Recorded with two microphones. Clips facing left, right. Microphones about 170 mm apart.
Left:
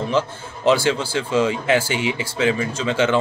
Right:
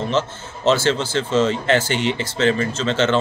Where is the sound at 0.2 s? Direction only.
10° left (ahead or behind).